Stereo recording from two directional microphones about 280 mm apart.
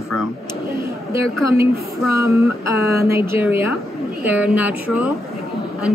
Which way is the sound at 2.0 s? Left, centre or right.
Centre.